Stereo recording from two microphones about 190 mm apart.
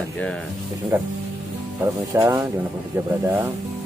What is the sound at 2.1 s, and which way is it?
Speech, 15° right (ahead or behind).